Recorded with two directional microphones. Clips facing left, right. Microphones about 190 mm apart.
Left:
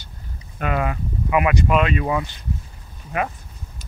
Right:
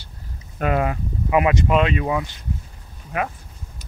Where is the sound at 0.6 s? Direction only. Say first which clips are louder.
Right 2 dB; 40° right (ahead or behind).